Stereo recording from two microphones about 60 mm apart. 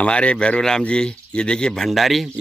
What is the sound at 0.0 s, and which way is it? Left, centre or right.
A man's voice, centre.